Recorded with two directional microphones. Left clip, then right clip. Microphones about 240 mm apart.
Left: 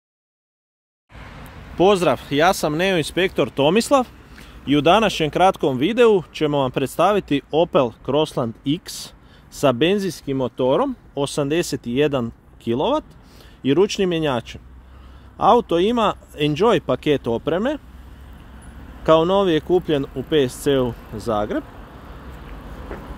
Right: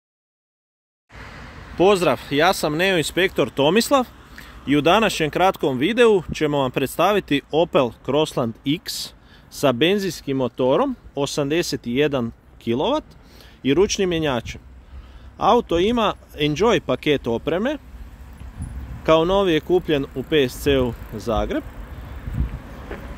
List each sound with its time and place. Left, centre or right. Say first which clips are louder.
1.8 s speech: left 1 dB; centre
19.0 s speech: left 1 dB; centre